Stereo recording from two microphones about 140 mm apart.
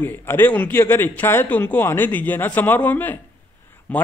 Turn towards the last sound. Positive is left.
turn(degrees=10)  # may be behind; listen again after turning